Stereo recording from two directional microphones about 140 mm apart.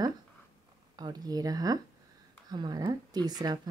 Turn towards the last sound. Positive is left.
turn(degrees=-30)  # may be behind; listen again after turning